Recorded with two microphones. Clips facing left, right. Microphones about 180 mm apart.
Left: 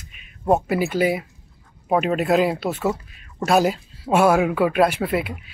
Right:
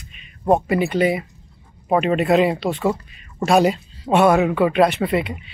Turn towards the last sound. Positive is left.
turn(degrees=5)  # may be behind; listen again after turning